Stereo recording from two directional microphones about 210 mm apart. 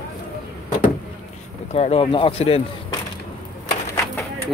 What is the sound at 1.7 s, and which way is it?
Speech, 30° left (ahead or behind).